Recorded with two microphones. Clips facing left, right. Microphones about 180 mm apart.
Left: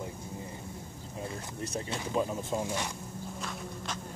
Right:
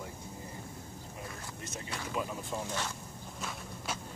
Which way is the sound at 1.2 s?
30° left (ahead or behind).